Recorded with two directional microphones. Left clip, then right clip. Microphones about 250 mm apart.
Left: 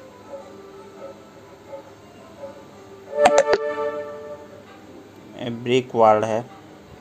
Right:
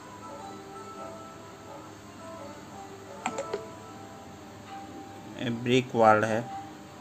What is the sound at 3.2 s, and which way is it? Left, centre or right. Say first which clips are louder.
Music: left 18 dB; left.